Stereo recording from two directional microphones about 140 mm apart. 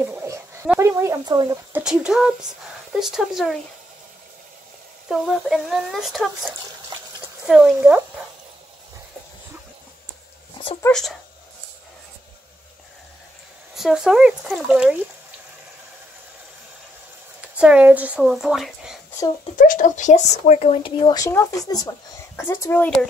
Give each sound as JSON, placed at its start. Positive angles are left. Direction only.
{"t": 0.0, "sound": "dog", "side_deg": -15}
{"t": 0.7, "sound": "speech", "side_deg": -20}
{"t": 1.7, "sound": "speech", "side_deg": -5}
{"t": 5.0, "sound": "speech", "side_deg": 0}
{"t": 10.9, "sound": "speech", "side_deg": 5}
{"t": 13.7, "sound": "speech", "side_deg": -5}
{"t": 17.4, "sound": "speech", "side_deg": -10}
{"t": 19.5, "sound": "speech", "side_deg": 70}
{"t": 21.2, "sound": "speech", "side_deg": 20}